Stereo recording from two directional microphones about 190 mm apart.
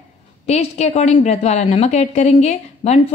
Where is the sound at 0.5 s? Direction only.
35° left (ahead or behind).